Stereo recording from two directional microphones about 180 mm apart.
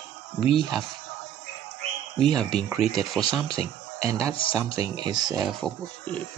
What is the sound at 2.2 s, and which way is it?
Speech, 5° left (ahead or behind).